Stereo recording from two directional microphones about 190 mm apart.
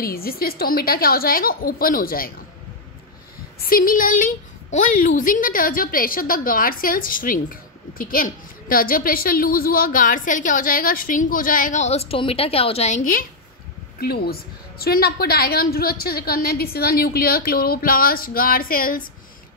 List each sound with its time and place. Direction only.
0.0 s a woman's voice: 50° left (ahead or behind)
3.5 s a woman's voice: 50° left (ahead or behind)